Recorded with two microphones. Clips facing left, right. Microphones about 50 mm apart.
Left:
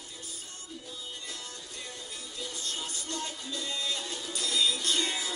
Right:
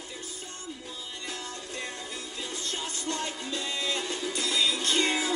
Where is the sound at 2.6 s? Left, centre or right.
Right.